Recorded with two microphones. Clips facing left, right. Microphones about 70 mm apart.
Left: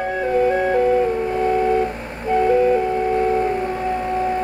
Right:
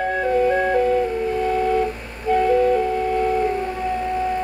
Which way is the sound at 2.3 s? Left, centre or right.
Centre.